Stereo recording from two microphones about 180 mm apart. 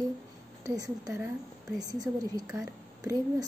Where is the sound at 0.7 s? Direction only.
20° right (ahead or behind).